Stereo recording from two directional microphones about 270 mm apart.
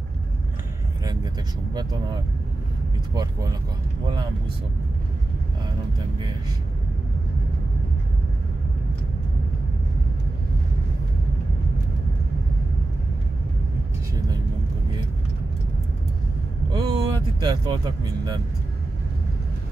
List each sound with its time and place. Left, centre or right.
1.0 s vehicle: centre
3.2 s speech: centre
16.7 s speech: centre